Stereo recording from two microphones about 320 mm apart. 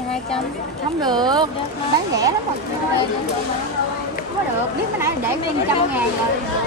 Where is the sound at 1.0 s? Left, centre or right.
Centre.